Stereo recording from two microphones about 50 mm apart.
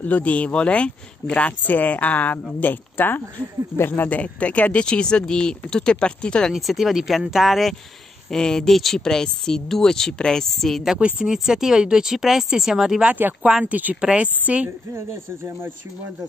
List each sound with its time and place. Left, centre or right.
0.0 s speech: left
1.6 s a woman's voice: left
4.2 s speech: left
6.5 s speech: centre
8.3 s speech: centre
11.0 s speech: right
11.2 s speech: centre
13.0 s speech: right
14.0 s speech: right
15.0 s speech: right